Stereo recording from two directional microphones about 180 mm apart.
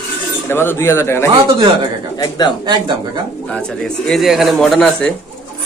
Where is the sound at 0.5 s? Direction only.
15° left (ahead or behind).